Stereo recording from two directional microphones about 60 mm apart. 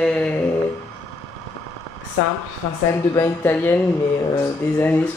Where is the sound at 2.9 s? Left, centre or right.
Left.